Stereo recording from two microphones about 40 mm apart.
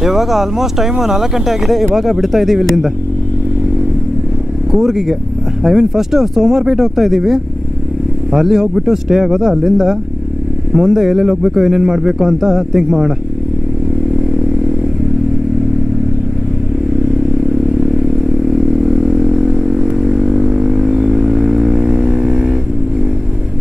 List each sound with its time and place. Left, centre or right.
0.0 s speech: centre
4.7 s speech: centre
17.5 s vehicle: centre
20.0 s a sound: centre
20.9 s vehicle: centre
21.9 s vehicle: right
22.3 s vehicle: centre